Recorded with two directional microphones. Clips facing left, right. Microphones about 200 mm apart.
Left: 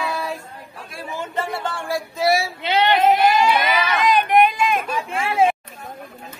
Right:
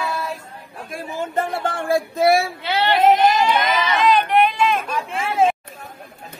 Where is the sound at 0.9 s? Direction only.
50° right (ahead or behind).